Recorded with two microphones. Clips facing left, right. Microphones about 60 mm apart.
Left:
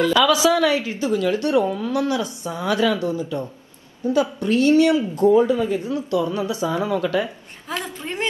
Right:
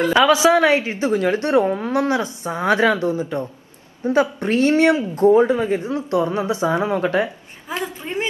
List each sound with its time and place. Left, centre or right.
0.0 s a woman's voice: right
7.6 s a woman's voice: right